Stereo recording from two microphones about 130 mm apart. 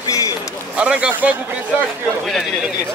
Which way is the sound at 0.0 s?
25° left (ahead or behind).